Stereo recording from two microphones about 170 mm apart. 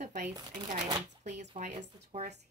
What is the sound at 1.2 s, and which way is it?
A woman's voice, 45° right (ahead or behind).